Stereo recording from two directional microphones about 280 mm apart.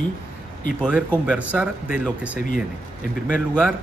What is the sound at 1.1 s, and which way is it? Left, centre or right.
Speech, centre.